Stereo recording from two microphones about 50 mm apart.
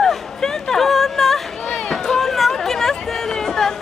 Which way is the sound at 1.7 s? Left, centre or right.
Centre.